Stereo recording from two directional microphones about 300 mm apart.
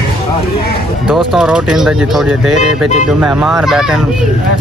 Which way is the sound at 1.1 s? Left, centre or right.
Centre.